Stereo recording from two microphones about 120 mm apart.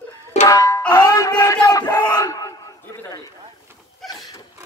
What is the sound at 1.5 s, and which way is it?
Crowd, 35° left (ahead or behind).